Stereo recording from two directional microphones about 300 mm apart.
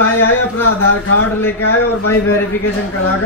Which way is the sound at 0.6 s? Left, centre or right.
Left.